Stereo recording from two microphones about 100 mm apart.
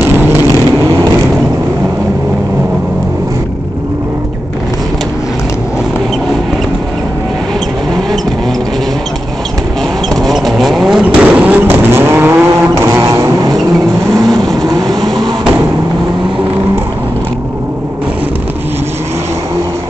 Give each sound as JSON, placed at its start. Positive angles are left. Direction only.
{"t": 0.0, "sound": "vehicle", "side_deg": -20}
{"t": 10.0, "sound": "vehicle", "side_deg": 0}
{"t": 14.6, "sound": "vehicle", "side_deg": -40}
{"t": 15.0, "sound": "a sound", "side_deg": 0}